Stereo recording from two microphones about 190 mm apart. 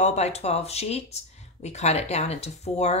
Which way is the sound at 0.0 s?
35° left (ahead or behind).